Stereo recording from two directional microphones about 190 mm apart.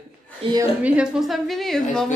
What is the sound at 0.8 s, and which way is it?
A woman's voice, 5° right (ahead or behind).